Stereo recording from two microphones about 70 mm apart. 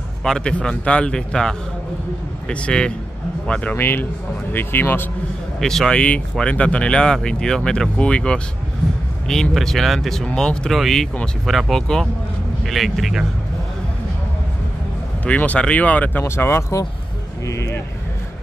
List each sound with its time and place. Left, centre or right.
0.2 s speech: centre
3.7 s speech: left
5.6 s speech: centre
5.9 s speech: centre
15.2 s speech: centre
16.3 s speech: left